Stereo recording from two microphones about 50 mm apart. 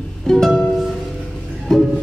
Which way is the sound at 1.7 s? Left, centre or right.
Centre.